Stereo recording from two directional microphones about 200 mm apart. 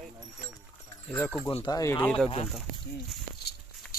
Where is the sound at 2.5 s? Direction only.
Centre (ahead or behind).